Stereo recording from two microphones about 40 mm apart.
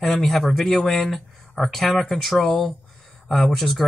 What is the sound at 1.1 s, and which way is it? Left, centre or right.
Speech, centre.